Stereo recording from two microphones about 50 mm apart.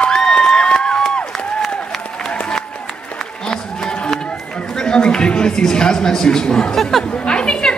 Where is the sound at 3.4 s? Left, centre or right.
Centre.